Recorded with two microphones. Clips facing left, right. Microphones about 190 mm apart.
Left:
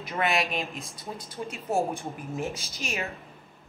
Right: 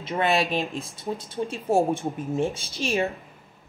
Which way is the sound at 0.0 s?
30° right (ahead or behind).